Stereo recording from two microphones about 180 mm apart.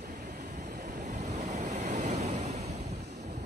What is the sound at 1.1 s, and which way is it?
Waves, 40° right (ahead or behind).